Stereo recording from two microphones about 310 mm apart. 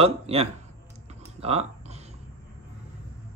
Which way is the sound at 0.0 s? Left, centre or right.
Centre.